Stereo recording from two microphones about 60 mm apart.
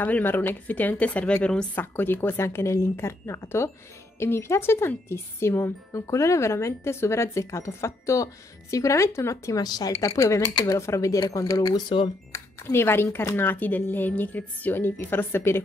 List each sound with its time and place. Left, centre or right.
0.0 s a woman's voice: left
1.8 s speech: left
12.3 s speech: left